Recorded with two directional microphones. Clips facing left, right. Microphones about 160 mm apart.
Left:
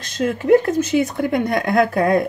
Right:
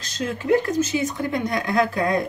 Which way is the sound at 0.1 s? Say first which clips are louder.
Left 6 dB; 50° left (ahead or behind).